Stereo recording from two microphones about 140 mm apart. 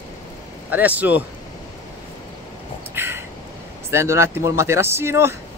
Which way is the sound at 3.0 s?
15° right (ahead or behind).